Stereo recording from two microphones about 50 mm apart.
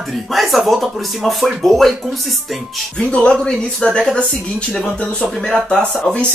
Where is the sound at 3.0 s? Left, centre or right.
Left.